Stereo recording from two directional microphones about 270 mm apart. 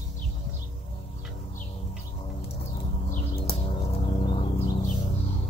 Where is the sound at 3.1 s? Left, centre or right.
Left.